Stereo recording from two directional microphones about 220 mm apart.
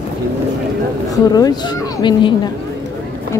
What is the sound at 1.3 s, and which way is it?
Speech, 15° left (ahead or behind).